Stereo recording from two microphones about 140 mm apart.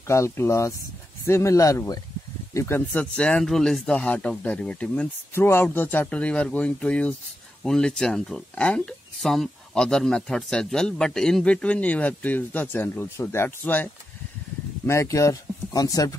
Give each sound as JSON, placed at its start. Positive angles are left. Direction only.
{"t": 0.0, "sound": "speech", "side_deg": 20}
{"t": 2.5, "sound": "speech", "side_deg": 15}
{"t": 14.9, "sound": "speech", "side_deg": 20}